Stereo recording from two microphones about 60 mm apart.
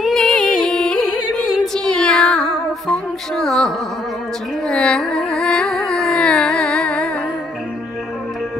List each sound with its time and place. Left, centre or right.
0.0 s music: centre
0.3 s music: centre
4.6 s carnatic music: centre